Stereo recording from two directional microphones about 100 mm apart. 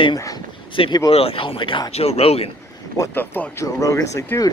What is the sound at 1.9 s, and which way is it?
Speech, 85° left.